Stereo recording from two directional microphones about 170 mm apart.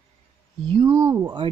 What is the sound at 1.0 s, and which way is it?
Speech, 15° right (ahead or behind).